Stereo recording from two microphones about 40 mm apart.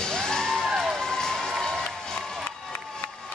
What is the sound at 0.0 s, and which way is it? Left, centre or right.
Music, centre.